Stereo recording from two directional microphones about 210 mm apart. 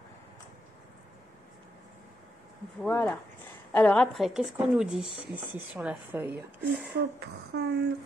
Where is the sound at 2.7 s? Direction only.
5° left (ahead or behind); by 6.4 s 10° right (ahead or behind).